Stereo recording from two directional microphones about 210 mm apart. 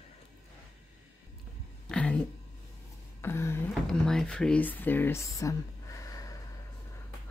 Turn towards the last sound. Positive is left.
turn(degrees=15)  # may be behind; listen again after turning